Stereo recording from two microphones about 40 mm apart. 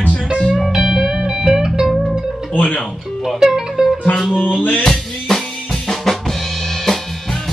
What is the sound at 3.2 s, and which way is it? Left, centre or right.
Music, centre.